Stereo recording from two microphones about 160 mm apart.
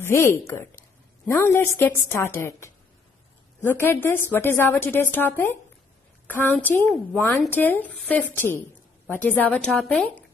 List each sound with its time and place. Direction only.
0.0 s a woman's voice: 15° left (ahead or behind)
8.4 s a woman's voice: 15° left (ahead or behind)